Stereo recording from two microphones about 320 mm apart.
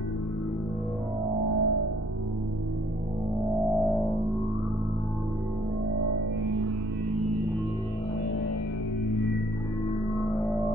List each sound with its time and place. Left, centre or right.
1.5 s music: right
3.4 s music: centre